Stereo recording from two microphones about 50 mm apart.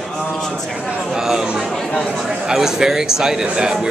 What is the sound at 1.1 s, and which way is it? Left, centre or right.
A man's voice, centre.